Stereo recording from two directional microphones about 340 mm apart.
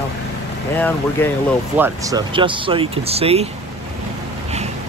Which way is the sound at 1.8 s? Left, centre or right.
Centre.